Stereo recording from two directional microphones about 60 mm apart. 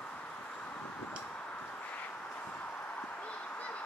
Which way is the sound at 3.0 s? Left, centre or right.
Left.